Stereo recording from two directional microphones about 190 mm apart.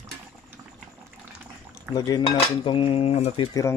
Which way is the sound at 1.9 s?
20° left (ahead or behind).